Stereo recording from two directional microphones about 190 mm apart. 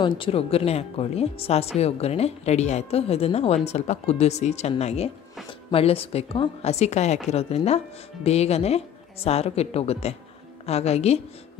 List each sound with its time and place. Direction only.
0.2 s speech: 30° left (ahead or behind)